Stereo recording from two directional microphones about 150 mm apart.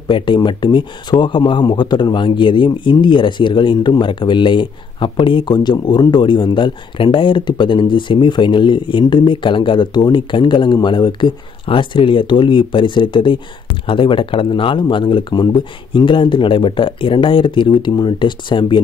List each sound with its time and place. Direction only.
0.1 s speech: 30° left (ahead or behind)